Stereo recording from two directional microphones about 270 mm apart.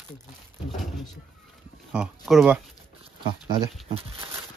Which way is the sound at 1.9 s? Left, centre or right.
Centre.